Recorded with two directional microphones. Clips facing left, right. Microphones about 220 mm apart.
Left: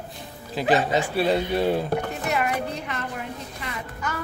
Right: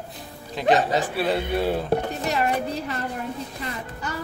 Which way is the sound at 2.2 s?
35° right (ahead or behind).